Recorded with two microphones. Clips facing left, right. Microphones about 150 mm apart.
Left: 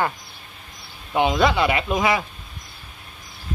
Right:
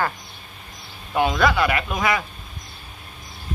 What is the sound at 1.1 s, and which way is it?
Speech, 20° left (ahead or behind).